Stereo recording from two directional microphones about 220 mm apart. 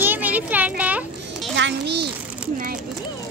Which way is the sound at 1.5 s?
50° right (ahead or behind).